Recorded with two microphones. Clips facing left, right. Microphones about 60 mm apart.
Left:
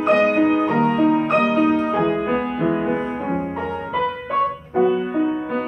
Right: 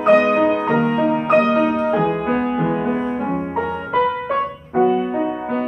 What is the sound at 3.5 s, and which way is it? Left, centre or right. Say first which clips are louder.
Music: right 4 dB; right.